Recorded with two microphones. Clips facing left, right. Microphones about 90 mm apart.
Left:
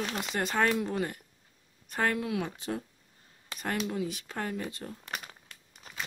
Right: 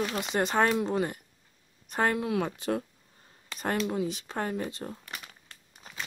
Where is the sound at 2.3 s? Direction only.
50° right (ahead or behind).